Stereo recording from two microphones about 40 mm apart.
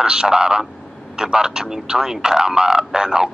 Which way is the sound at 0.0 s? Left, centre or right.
Right.